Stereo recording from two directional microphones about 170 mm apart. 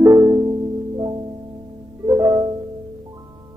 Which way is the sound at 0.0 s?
20° right (ahead or behind).